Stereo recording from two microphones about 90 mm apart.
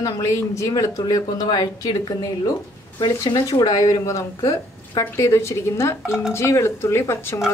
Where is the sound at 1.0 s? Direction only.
50° left (ahead or behind).